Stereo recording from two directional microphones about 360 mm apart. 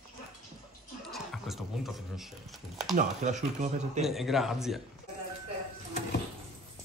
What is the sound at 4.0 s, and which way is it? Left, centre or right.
Speech, centre.